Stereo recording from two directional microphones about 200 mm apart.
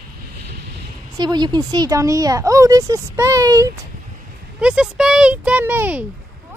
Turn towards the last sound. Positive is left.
turn(degrees=-10)  # may be behind; listen again after turning